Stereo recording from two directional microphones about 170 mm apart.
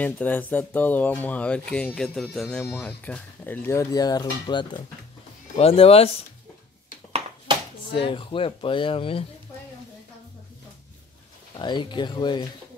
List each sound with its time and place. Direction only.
0.0 s speech: 10° left (ahead or behind); by 6.0 s 35° left (ahead or behind)
7.1 s a sound: 35° right (ahead or behind)
7.9 s speech: 30° left (ahead or behind)
11.5 s speech: 25° left (ahead or behind)